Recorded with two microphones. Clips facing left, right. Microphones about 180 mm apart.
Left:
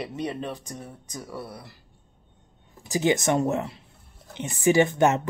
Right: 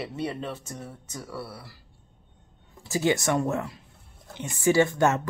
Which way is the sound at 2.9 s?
20° left (ahead or behind).